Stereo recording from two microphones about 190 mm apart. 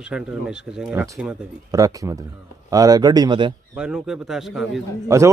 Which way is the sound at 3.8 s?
5° right (ahead or behind).